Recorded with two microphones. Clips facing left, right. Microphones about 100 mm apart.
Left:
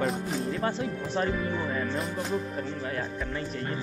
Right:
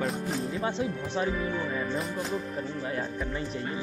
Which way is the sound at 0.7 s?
20° right (ahead or behind).